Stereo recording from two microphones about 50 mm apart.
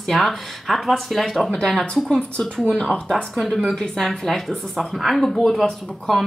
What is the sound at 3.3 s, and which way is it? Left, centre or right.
Speech, centre.